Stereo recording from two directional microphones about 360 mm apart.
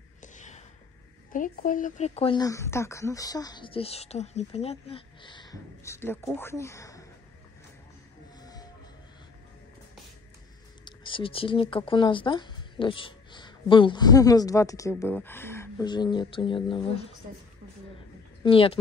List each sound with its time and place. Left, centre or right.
0.2 s a sound: left
1.3 s speech: left
8.4 s train: centre
10.9 s speech: centre
18.4 s speech: centre